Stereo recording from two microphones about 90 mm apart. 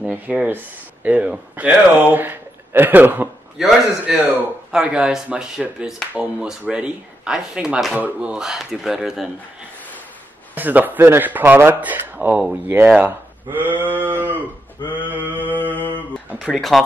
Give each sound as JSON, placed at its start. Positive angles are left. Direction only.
{"t": 0.0, "sound": "speech", "side_deg": -15}
{"t": 3.6, "sound": "speech", "side_deg": -5}
{"t": 10.5, "sound": "a man's voice", "side_deg": -20}
{"t": 15.6, "sound": "mantra", "side_deg": 20}
{"t": 16.4, "sound": "speech", "side_deg": 0}